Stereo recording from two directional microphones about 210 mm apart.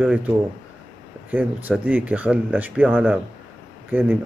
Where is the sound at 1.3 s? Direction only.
10° right (ahead or behind).